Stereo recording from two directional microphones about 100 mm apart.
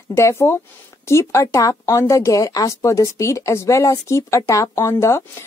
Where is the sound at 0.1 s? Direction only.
25° left (ahead or behind).